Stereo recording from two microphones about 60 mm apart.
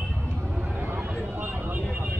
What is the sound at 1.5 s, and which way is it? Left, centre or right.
Vehicle, right.